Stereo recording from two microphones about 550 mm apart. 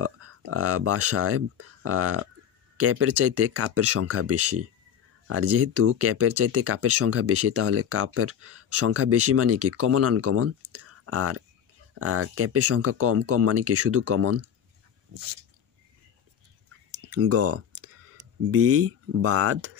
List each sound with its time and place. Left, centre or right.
0.0 s speech: right
17.0 s a sound: right
18.5 s speech: right